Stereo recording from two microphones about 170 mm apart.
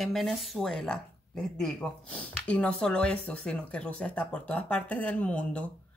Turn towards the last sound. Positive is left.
turn(degrees=10)  # may be behind; listen again after turning